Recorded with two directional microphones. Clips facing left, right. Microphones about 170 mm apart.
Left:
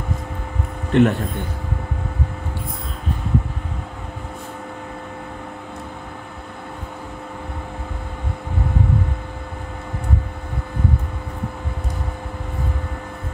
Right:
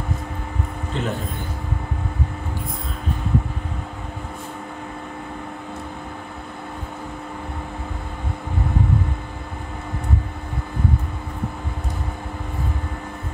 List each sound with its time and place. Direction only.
0.9 s speech: 70° left (ahead or behind)